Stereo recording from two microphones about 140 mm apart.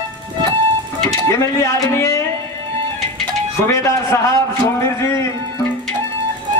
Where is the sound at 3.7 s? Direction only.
20° left (ahead or behind).